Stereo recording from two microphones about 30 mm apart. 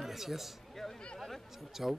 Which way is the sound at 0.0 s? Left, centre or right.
Centre.